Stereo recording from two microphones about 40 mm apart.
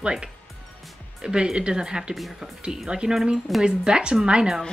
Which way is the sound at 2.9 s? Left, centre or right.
Right.